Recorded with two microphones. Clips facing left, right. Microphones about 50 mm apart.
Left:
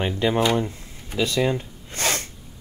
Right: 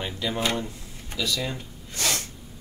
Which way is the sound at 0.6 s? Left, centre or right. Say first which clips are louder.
Left 6 dB; left.